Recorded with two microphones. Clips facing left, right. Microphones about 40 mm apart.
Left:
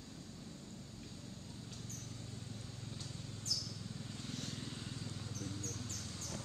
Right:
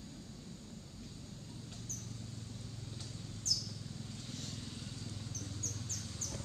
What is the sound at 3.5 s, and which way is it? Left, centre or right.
Vehicle, left.